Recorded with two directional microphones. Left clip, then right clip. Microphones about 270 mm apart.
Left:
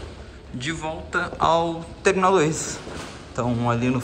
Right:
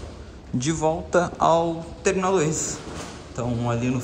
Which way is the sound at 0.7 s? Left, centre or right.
Centre.